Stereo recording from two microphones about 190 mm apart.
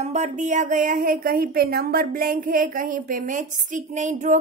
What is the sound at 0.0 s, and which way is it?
Speech, 35° right (ahead or behind).